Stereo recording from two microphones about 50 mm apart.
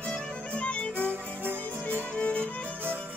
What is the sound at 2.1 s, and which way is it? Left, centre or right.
Music, left.